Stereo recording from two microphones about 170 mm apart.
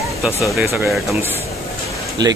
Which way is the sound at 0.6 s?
15° right (ahead or behind).